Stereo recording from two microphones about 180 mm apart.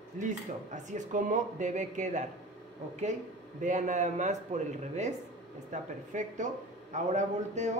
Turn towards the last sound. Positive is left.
turn(degrees=-40)  # may be behind; listen again after turning